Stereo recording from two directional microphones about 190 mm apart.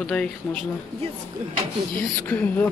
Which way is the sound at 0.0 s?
5° left (ahead or behind).